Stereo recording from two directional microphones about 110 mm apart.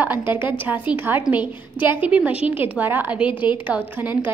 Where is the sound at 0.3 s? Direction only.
15° right (ahead or behind).